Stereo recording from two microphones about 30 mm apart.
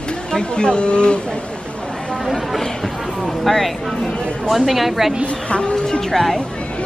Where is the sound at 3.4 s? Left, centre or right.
Centre.